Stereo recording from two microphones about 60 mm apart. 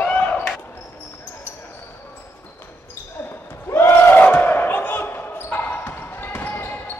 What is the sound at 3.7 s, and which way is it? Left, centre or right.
Basketball bounce, left.